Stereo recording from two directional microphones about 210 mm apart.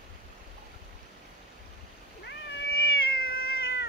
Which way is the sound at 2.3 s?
55° left (ahead or behind).